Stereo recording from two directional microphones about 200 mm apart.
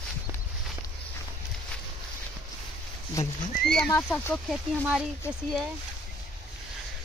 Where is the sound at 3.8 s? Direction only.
15° left (ahead or behind).